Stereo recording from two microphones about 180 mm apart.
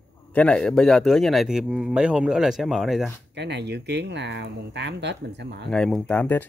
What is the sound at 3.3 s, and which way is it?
Speech, 70° right (ahead or behind).